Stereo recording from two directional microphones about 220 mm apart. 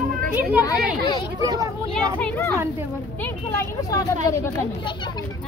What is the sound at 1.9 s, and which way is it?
A child's voice, 5° left (ahead or behind).